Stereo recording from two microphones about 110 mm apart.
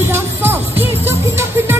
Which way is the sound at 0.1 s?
20° right (ahead or behind).